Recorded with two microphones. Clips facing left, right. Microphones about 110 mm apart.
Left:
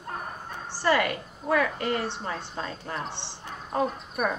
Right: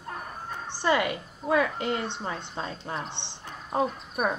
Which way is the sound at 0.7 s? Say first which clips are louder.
Left 1 dB; 20° right (ahead or behind).